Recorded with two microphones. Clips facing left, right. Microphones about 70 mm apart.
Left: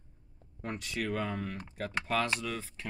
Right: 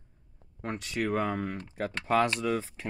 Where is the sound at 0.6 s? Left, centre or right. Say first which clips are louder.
Right 4 dB; right.